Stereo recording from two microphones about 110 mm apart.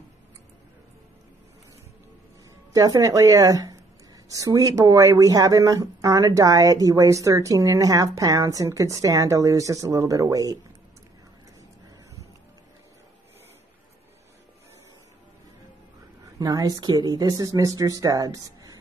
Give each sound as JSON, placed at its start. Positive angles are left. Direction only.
{"t": 2.7, "sound": "speech", "side_deg": -30}
{"t": 16.3, "sound": "speech", "side_deg": -35}